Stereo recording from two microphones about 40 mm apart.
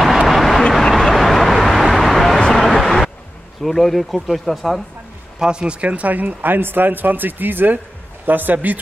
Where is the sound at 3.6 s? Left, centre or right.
Centre.